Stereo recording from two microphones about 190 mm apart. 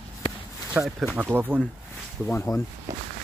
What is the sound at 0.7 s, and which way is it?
Speech, 5° right (ahead or behind).